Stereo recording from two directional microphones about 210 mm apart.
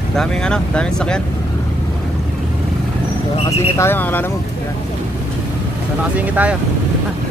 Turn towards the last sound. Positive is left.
turn(degrees=-5)  # may be behind; listen again after turning